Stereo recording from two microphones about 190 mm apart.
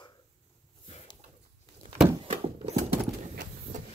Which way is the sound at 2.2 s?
35° right (ahead or behind).